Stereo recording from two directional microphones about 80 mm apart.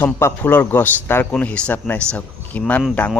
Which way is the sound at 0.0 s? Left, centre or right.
Left.